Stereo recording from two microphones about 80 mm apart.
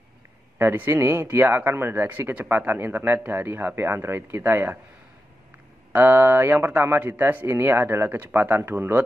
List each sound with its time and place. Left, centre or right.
0.6 s speech: right
5.9 s speech: right